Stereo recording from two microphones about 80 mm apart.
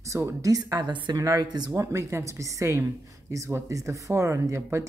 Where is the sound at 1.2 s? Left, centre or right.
Right.